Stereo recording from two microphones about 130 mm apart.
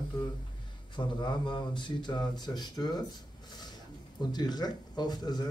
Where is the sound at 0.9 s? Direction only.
35° left (ahead or behind).